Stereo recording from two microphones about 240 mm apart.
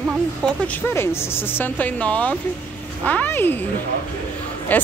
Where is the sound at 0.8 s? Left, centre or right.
Centre.